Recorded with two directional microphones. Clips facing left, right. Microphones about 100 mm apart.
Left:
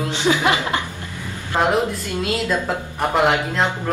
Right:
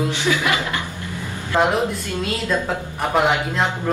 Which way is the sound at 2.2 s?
Centre (ahead or behind).